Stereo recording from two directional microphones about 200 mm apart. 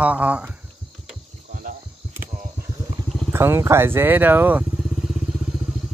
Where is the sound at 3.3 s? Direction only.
10° right (ahead or behind).